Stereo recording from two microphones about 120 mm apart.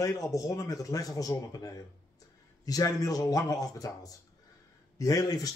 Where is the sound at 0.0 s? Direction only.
25° left (ahead or behind).